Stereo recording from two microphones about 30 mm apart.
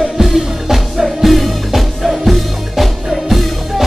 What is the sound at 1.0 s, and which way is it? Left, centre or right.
Music, centre.